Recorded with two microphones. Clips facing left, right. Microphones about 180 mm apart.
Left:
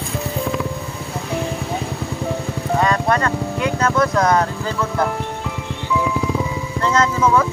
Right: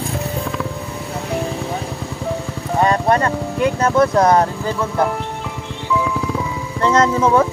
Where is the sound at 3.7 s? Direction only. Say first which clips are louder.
Right 3 dB; 30° right (ahead or behind).